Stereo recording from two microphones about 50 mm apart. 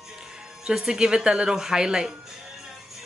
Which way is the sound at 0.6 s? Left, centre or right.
Centre.